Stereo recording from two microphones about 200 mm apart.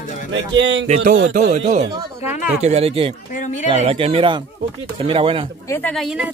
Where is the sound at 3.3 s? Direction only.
35° left (ahead or behind).